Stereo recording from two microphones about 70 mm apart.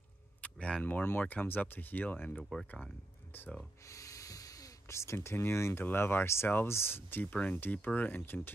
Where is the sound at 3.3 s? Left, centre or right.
Left.